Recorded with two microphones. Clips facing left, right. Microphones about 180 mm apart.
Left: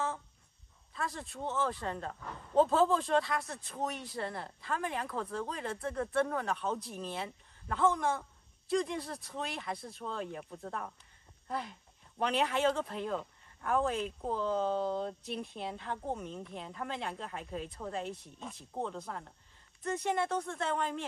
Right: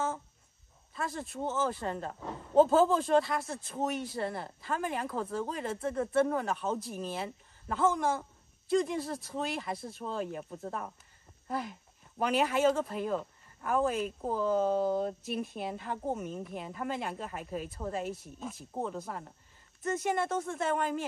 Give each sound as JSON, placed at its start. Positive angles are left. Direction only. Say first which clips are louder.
{"t": 0.9, "sound": "speech", "louder": "right 3 dB", "side_deg": 0}
{"t": 2.0, "sound": "speech", "louder": "right 3 dB", "side_deg": -20}
{"t": 2.5, "sound": "speech", "louder": "right 3 dB", "side_deg": -5}
{"t": 5.0, "sound": "speech", "louder": "right 3 dB", "side_deg": -25}
{"t": 5.3, "sound": "speech", "louder": "right 3 dB", "side_deg": -5}
{"t": 9.1, "sound": "speech", "louder": "right 5 dB", "side_deg": -25}
{"t": 9.7, "sound": "speech", "louder": "right 2 dB", "side_deg": 0}
{"t": 11.4, "sound": "speech", "louder": "right 3 dB", "side_deg": -5}